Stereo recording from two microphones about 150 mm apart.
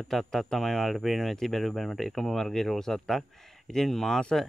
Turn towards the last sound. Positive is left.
turn(degrees=5)  # may be behind; listen again after turning